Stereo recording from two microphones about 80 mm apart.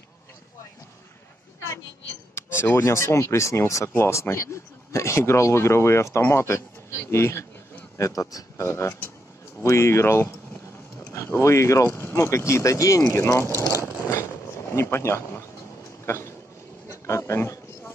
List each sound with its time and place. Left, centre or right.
2.3 s speech: left
8.0 s speech: left
16.1 s a sound: left